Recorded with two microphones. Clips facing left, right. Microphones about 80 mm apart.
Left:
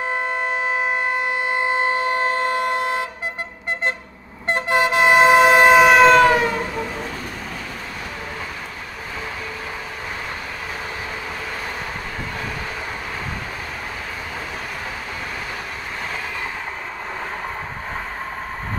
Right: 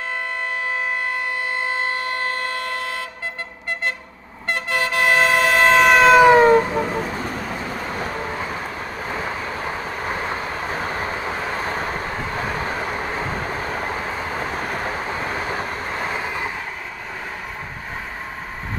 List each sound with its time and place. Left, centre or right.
0.1 s siren: left
4.5 s train: left; by 6.2 s centre
6.3 s train: right
10.0 s vehicle: right
14.4 s vehicle: right